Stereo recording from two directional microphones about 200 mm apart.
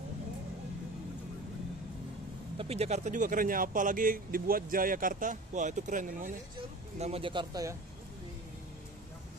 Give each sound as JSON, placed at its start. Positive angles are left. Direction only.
{"t": 2.5, "sound": "speech", "side_deg": -30}
{"t": 7.0, "sound": "speech", "side_deg": -30}